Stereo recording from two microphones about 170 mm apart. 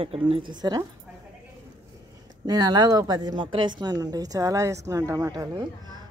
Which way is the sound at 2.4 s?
25° right (ahead or behind).